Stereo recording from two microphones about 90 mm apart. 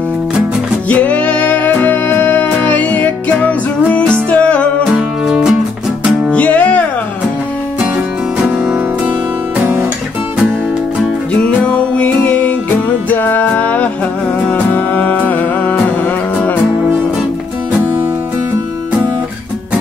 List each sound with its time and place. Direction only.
0.8 s music: 15° left (ahead or behind)
4.9 s music: 10° right (ahead or behind)
6.3 s music: 15° left (ahead or behind)
8.4 s music: 10° right (ahead or behind)
11.4 s music: 15° left (ahead or behind)